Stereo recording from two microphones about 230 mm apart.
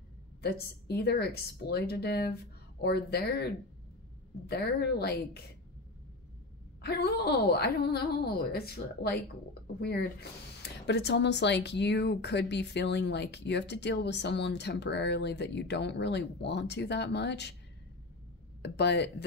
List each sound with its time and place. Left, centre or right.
0.4 s speech: left
6.8 s speech: left
18.6 s speech: left